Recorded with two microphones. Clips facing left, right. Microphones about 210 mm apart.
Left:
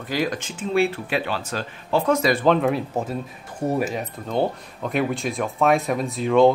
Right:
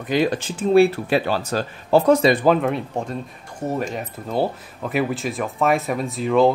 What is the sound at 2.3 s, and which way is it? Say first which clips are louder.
Speech: right 1 dB; 5° right (ahead or behind).